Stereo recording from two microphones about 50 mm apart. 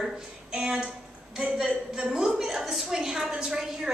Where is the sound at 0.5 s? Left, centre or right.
Centre.